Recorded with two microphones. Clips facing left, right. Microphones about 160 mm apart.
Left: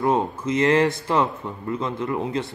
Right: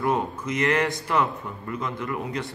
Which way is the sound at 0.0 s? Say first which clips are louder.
Left 4 dB; 25° left (ahead or behind).